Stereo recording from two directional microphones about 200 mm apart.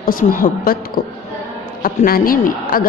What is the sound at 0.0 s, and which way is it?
A woman's voice, 45° left (ahead or behind).